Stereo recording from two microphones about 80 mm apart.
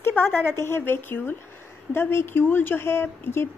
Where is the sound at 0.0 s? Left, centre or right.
Left.